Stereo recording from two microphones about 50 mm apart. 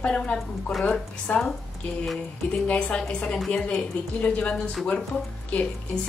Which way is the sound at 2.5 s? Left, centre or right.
Left.